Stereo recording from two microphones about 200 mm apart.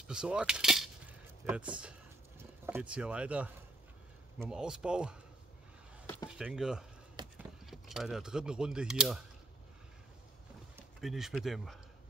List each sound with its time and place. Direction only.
0.1 s coin: 5° right (ahead or behind)
4.4 s speech: 5° right (ahead or behind)
6.3 s speech: 5° right (ahead or behind)
7.2 s a sound: 20° right (ahead or behind)
7.6 s speech: centre (ahead or behind)
11.0 s speech: centre (ahead or behind)